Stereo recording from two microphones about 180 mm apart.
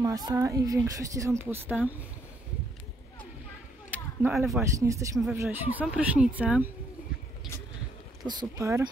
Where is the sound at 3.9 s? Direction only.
5° right (ahead or behind).